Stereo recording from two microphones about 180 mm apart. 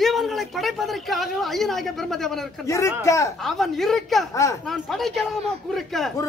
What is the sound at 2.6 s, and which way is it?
Speech, 15° left (ahead or behind).